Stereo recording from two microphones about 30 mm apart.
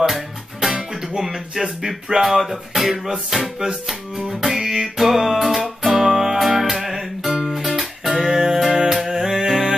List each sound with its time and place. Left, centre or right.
0.6 s music: centre
4.4 s music: centre